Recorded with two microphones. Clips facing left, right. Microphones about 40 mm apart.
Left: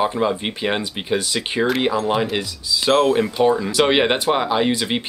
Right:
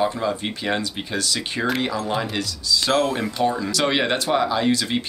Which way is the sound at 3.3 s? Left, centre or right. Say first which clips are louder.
Left 5 dB; centre.